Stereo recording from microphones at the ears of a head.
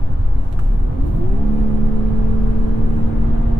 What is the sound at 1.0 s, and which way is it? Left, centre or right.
Vehicle, right.